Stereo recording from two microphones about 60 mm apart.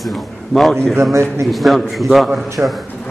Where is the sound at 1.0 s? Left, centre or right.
Right.